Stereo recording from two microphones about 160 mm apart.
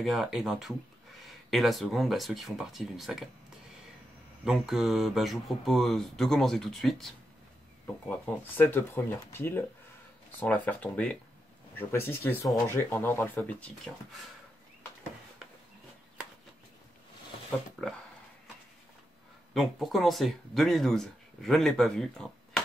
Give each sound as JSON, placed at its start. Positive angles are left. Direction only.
{"t": 0.0, "sound": "speech", "side_deg": 0}
{"t": 4.5, "sound": "speech", "side_deg": 0}
{"t": 8.5, "sound": "speech", "side_deg": 15}
{"t": 17.8, "sound": "speech", "side_deg": 5}
{"t": 19.5, "sound": "speech", "side_deg": 0}